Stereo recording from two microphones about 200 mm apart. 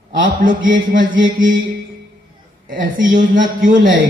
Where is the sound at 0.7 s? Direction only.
65° right (ahead or behind).